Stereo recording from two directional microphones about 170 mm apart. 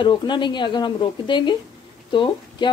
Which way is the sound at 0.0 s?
25° left (ahead or behind).